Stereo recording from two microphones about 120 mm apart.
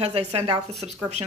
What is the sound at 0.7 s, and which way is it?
Speech, centre (ahead or behind).